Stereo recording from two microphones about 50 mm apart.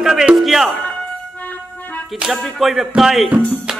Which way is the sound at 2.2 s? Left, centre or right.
Right.